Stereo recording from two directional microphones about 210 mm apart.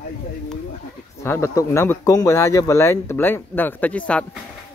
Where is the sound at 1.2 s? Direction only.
15° left (ahead or behind).